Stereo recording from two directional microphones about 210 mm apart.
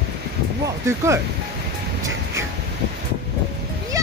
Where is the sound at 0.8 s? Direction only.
15° right (ahead or behind).